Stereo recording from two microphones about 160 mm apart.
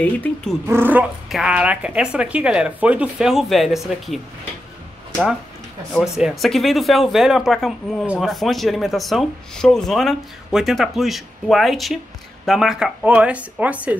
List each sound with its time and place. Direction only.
0.0 s speech: 10° left (ahead or behind)
0.7 s speech: 15° right (ahead or behind)
5.9 s speech: centre (ahead or behind)